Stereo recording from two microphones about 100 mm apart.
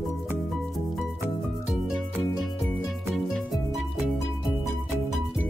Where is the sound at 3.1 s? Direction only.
Centre (ahead or behind).